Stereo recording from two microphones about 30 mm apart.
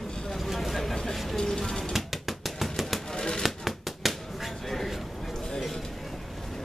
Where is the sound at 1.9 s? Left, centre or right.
Centre.